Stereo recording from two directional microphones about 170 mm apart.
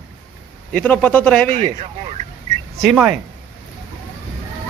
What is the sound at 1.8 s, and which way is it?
Speech, 35° right (ahead or behind).